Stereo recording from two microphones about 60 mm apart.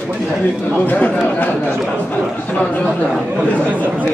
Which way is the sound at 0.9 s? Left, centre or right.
Left.